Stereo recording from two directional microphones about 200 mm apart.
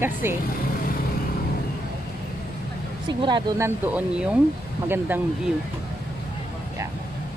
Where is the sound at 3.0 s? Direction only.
20° right (ahead or behind).